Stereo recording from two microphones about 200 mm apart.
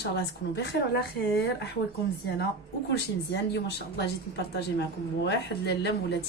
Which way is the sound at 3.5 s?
55° left (ahead or behind).